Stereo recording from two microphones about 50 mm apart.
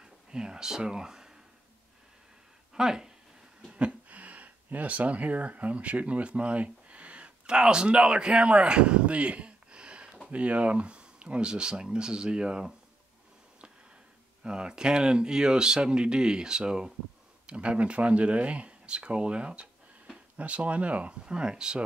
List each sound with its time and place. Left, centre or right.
0.0 s a sound: centre
2.7 s speech: centre
3.7 s speech: right
14.4 s speech: centre